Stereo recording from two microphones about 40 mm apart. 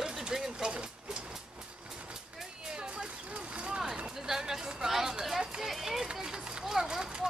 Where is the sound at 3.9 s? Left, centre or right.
Centre.